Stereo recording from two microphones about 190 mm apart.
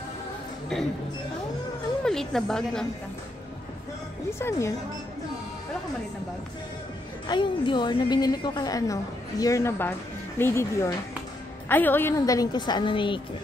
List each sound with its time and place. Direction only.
2.0 s speech: centre (ahead or behind)
4.3 s speech: 15° left (ahead or behind)
7.2 s a woman's voice: 25° left (ahead or behind)